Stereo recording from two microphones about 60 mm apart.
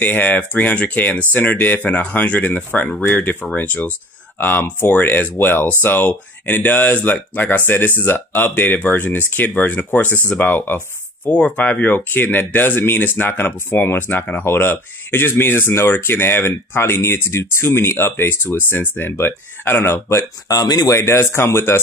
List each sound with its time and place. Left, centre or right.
0.0 s speech: left
11.2 s speech: left
20.4 s speech: left
20.9 s speech: left